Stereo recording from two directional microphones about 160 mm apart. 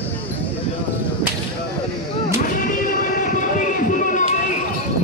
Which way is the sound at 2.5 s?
60° left (ahead or behind).